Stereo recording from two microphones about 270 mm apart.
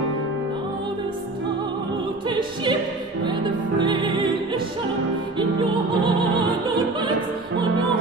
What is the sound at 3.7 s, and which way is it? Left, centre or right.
Music, centre.